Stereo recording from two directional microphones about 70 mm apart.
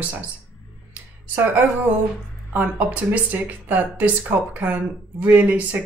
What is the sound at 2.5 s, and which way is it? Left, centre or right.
Speech, right.